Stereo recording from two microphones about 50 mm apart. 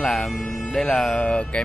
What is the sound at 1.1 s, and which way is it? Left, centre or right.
Speech, left.